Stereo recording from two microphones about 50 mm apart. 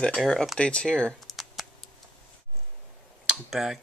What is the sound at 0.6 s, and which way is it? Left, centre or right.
Speech, centre.